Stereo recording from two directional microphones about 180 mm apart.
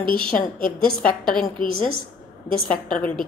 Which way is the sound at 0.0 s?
30° right (ahead or behind).